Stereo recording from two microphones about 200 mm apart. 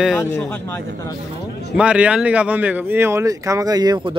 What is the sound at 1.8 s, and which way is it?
Speech, 5° right (ahead or behind).